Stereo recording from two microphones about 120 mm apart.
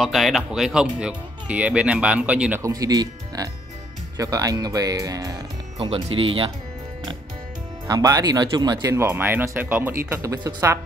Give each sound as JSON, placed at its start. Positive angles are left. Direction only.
{"t": 0.0, "sound": "speech", "side_deg": 0}
{"t": 2.6, "sound": "speech", "side_deg": -30}
{"t": 5.8, "sound": "speech", "side_deg": -50}
{"t": 7.9, "sound": "speech", "side_deg": -35}
{"t": 8.9, "sound": "speech", "side_deg": -15}